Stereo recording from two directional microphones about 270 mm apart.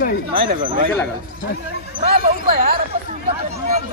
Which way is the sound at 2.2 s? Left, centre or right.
Right.